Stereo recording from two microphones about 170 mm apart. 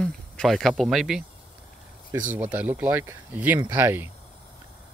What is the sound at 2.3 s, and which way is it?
Speech, 10° right (ahead or behind).